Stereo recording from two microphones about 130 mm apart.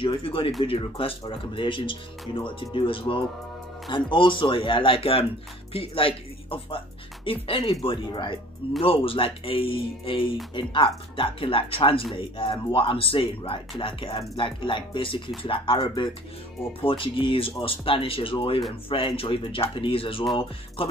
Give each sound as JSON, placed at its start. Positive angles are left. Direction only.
{"t": 0.0, "sound": "speech", "side_deg": 40}